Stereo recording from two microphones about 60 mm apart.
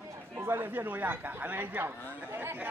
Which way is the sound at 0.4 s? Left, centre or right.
Right.